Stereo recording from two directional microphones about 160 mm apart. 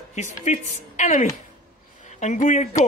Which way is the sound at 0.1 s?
45° left (ahead or behind).